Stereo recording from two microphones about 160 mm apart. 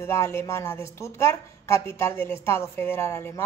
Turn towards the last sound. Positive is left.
turn(degrees=15)  # may be behind; listen again after turning